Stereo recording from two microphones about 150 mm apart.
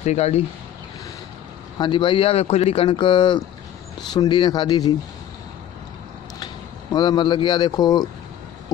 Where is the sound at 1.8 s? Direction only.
35° left (ahead or behind).